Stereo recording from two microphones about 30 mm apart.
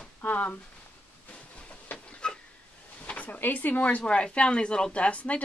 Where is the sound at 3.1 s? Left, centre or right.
Left.